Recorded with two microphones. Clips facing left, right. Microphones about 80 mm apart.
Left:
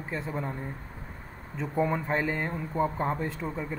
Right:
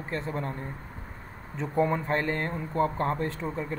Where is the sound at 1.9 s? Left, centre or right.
Centre.